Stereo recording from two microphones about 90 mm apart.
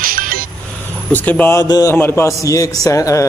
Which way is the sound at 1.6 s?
50° left (ahead or behind).